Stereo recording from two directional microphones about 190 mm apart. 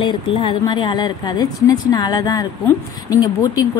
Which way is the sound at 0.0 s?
25° left (ahead or behind).